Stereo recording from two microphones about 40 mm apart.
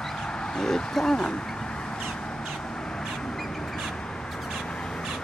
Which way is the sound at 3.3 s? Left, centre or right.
Centre.